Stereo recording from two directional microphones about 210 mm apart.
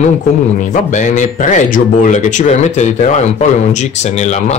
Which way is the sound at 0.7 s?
35° left (ahead or behind).